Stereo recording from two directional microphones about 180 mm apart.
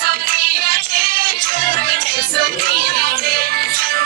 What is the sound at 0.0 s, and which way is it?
Music, 60° right (ahead or behind).